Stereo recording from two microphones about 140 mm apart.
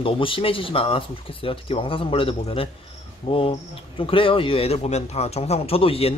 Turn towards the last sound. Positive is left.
turn(degrees=45)  # may be behind; listen again after turning